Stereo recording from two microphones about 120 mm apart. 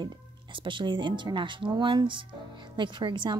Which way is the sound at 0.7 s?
40° right (ahead or behind).